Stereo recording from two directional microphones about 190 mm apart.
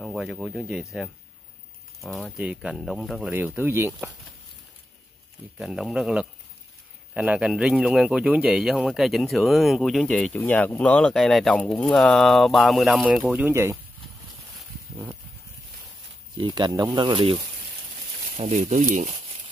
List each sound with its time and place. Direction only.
0.0 s a man's voice: centre (ahead or behind)
5.6 s a man's voice: 5° right (ahead or behind)
16.3 s speech: 25° right (ahead or behind)
18.4 s speech: 40° right (ahead or behind)